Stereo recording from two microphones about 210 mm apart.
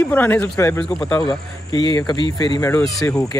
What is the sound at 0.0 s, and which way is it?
Speech, 10° left (ahead or behind).